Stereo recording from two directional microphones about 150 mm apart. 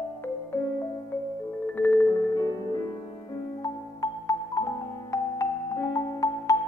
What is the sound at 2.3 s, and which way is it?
Music, 25° left (ahead or behind).